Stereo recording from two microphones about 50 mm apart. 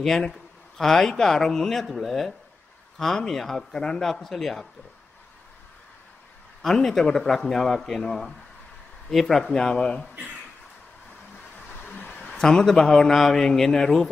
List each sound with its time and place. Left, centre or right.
0.3 s a man's voice: centre
6.6 s speech: centre
11.7 s vehicle: left
12.4 s speech: centre